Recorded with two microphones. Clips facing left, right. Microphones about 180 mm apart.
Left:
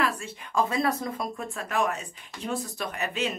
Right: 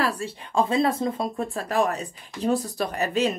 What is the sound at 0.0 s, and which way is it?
A woman's voice, 35° right (ahead or behind).